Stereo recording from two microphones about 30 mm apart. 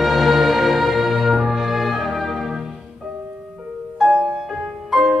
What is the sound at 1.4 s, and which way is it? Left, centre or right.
Music, centre.